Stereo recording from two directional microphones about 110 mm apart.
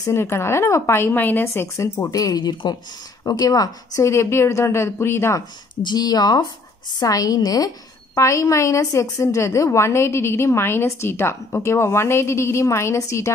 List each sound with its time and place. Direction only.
0.0 s a woman's voice: 25° left (ahead or behind)
5.9 s a woman's voice: 35° left (ahead or behind)